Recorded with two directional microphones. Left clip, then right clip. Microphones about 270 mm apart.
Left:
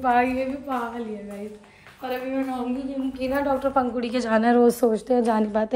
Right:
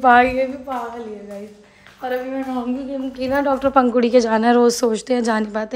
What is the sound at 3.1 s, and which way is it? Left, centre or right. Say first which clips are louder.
Speech: right 6 dB; right.